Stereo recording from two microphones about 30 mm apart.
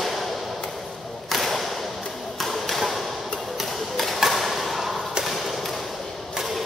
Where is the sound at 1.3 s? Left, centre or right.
Centre.